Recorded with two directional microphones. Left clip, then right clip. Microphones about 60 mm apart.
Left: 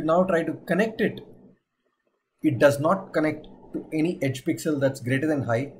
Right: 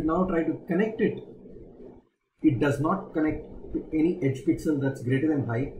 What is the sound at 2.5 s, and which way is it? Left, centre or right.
Speech, left.